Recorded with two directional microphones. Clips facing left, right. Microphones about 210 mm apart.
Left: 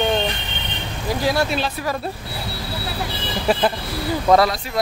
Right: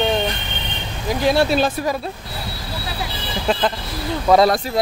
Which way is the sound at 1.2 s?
25° right (ahead or behind).